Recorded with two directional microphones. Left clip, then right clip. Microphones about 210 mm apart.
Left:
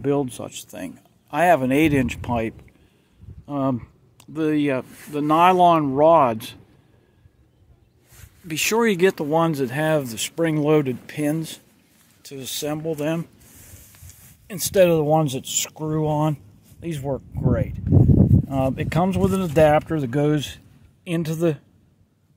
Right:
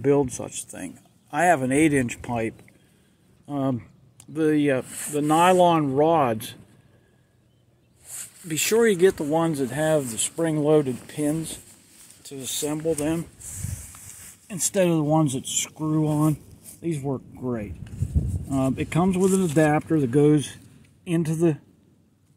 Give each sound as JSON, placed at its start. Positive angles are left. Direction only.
{"t": 0.0, "sound": "speech", "side_deg": 10}
{"t": 1.6, "sound": "speech", "side_deg": 30}
{"t": 3.4, "sound": "speech", "side_deg": 15}
{"t": 8.5, "sound": "speech", "side_deg": 10}
{"t": 8.9, "sound": "speech", "side_deg": 25}
{"t": 14.5, "sound": "speech", "side_deg": 25}